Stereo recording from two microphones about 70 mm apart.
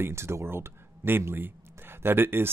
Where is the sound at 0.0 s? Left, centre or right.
Right.